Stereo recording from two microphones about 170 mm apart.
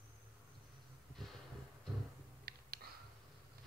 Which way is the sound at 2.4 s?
65° right (ahead or behind).